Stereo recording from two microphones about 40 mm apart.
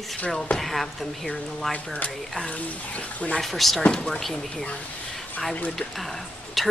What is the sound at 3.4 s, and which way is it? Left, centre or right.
Speech, centre.